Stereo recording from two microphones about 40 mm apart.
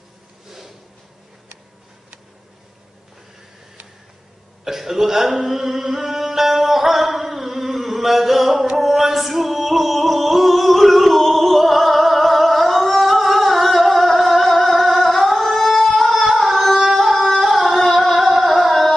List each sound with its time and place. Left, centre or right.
4.6 s music: centre
13.8 s singing: centre
14.1 s music: centre
15.4 s singing: centre
15.9 s a sound: centre
16.3 s carnatic music: centre
17.6 s a sound: centre